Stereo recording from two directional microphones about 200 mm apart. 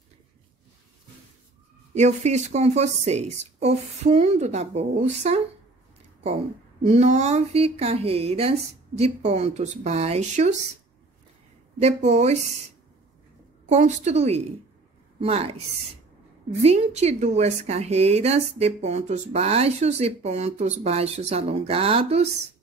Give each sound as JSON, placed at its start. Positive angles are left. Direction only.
{"t": 2.0, "sound": "a woman's voice", "side_deg": -35}
{"t": 6.8, "sound": "a woman's voice", "side_deg": -30}
{"t": 11.8, "sound": "a woman's voice", "side_deg": -35}
{"t": 13.7, "sound": "a woman's voice", "side_deg": -35}
{"t": 16.6, "sound": "a woman's voice", "side_deg": -35}